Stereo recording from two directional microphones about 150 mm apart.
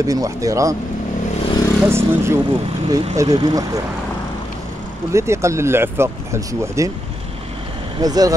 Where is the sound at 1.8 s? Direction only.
15° right (ahead or behind).